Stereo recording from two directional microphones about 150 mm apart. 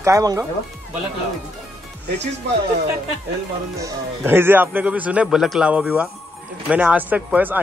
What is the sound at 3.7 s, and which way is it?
Speech, 20° right (ahead or behind).